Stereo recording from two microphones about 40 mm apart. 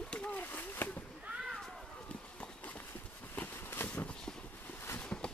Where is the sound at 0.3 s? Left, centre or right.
Left.